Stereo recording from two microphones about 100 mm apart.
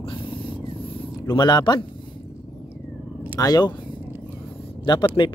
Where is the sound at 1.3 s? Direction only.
45° left (ahead or behind).